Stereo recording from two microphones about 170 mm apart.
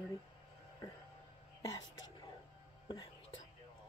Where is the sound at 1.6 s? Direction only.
20° left (ahead or behind).